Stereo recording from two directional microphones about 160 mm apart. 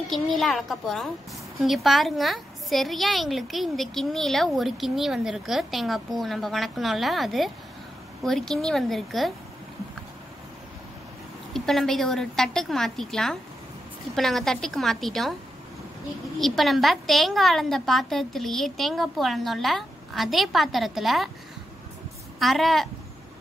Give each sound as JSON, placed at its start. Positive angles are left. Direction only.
{"t": 0.4, "sound": "a woman's voice", "side_deg": 0}
{"t": 11.5, "sound": "a woman's voice", "side_deg": 5}
{"t": 16.3, "sound": "a woman's voice", "side_deg": 0}
{"t": 22.4, "sound": "a woman's voice", "side_deg": 0}